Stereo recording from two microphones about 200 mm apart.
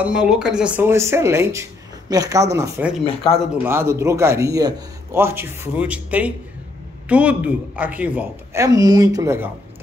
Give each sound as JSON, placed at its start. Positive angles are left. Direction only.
{"t": 0.0, "sound": "speech", "side_deg": -5}
{"t": 3.3, "sound": "speech", "side_deg": 30}
{"t": 3.6, "sound": "speech", "side_deg": -10}